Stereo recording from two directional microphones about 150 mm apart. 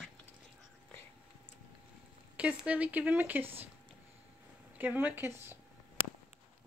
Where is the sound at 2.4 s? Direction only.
10° right (ahead or behind).